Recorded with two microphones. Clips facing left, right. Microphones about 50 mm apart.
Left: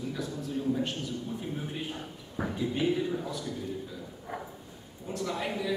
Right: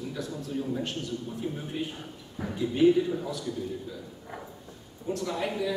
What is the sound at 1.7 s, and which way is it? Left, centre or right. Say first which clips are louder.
A man's voice: right 2 dB; centre.